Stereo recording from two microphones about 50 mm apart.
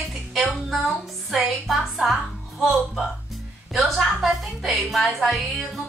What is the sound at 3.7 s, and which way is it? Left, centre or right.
A woman's voice, centre.